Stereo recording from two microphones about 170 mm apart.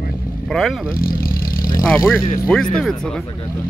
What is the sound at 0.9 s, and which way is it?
Vehicle, 60° left (ahead or behind).